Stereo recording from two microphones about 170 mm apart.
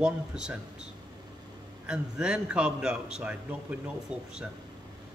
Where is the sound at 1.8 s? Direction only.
5° right (ahead or behind).